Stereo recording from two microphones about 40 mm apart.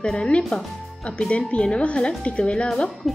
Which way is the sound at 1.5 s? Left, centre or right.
Left.